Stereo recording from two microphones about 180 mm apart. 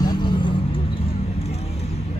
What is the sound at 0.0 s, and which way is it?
Vehicle, 25° left (ahead or behind).